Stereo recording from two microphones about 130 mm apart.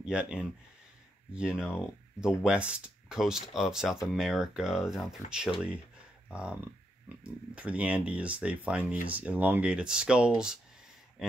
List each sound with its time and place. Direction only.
0.0 s speech: 10° right (ahead or behind)
5.2 s speech: 80° left
6.3 s speech: 10° right (ahead or behind)